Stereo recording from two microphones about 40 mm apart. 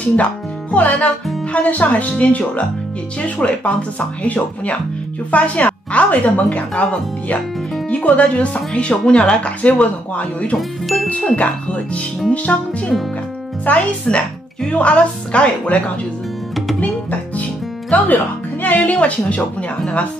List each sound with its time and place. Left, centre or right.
0.0 s a woman's voice: left
13.7 s speech: left
14.1 s speech: left
14.7 s speech: left
16.8 s music: left
17.9 s speech: left